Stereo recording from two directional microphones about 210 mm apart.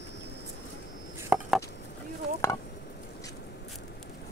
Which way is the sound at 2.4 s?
15° left (ahead or behind).